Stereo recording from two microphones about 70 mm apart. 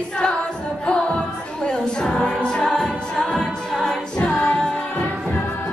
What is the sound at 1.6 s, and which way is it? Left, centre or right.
A capella, centre.